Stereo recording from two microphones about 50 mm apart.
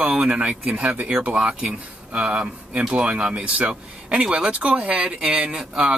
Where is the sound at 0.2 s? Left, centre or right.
Right.